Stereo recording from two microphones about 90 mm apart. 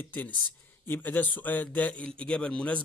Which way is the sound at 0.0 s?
15° left (ahead or behind).